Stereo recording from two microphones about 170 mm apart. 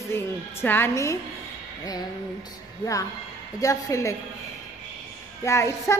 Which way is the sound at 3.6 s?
20° left (ahead or behind).